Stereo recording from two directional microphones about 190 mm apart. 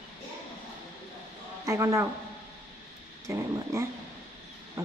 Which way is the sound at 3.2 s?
15° right (ahead or behind).